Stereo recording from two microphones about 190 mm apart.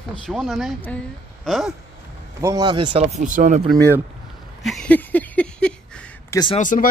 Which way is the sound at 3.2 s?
40° right (ahead or behind).